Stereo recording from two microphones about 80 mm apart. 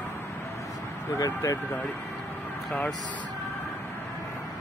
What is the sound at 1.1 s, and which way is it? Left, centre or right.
Speech, left.